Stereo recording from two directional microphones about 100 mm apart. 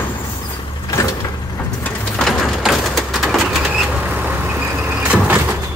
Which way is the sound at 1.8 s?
10° left (ahead or behind).